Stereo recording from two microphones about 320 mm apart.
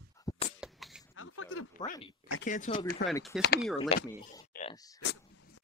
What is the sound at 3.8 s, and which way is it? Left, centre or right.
Speech, centre.